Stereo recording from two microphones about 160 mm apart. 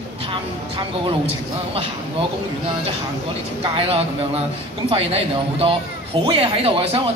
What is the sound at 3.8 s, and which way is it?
A man's voice, 40° right (ahead or behind).